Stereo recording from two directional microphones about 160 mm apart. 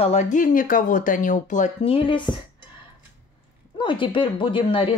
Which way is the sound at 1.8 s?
35° left (ahead or behind).